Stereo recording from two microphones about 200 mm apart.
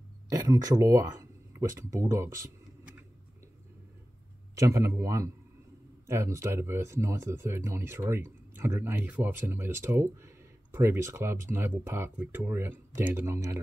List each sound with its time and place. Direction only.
0.3 s speech: 15° right (ahead or behind)
4.6 s speech: 15° right (ahead or behind)